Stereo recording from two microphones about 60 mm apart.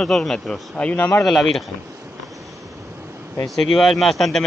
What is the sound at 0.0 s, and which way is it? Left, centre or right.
A man's voice, centre.